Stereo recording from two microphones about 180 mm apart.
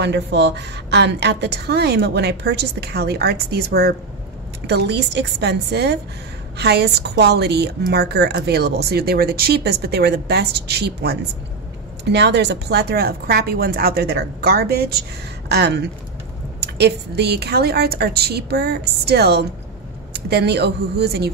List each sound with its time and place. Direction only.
0.0 s a woman's voice: 75° right (ahead or behind)